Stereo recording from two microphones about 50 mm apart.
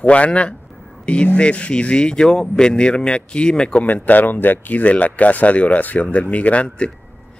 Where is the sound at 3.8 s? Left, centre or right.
Left.